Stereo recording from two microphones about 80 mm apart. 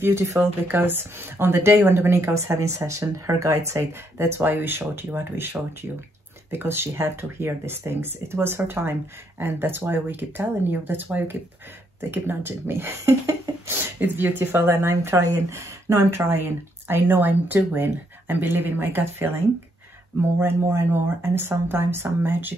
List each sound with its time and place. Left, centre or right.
0.0 s speech: right